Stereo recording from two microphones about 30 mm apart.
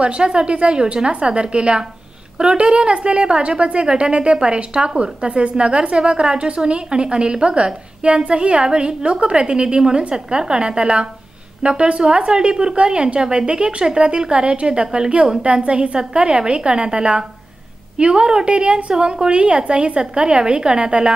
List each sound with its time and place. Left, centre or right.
0.0 s a woman's voice: right